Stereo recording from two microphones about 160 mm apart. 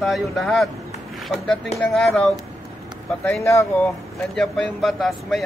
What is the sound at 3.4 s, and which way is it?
Speech, 15° left (ahead or behind).